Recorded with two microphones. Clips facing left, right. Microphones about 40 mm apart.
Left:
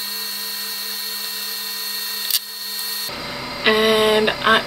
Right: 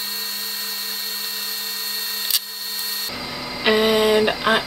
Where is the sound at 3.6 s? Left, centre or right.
Left.